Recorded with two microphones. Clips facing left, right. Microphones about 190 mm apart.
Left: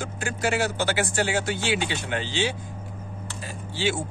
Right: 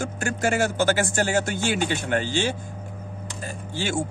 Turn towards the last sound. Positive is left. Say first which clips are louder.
# even
turn(degrees=-50)  # may be behind; listen again after turning